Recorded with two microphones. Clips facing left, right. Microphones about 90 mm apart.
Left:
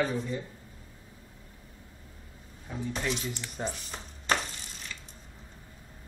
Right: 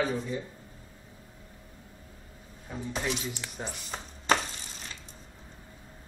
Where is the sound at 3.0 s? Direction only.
10° right (ahead or behind).